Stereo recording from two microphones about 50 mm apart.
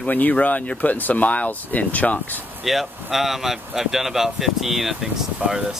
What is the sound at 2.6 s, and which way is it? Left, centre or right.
Speech, centre.